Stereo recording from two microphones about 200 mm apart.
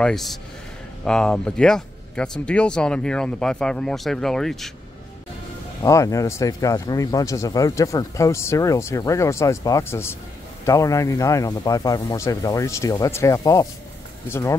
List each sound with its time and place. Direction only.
0.0 s speech: centre (ahead or behind)
5.8 s speech: 15° left (ahead or behind)